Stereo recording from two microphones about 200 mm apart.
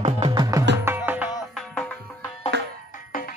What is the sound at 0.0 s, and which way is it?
Music, 25° right (ahead or behind).